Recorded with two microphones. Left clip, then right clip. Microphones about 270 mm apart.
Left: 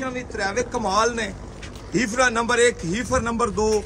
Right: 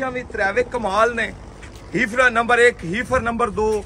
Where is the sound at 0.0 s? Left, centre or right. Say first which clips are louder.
Right 5 dB; centre.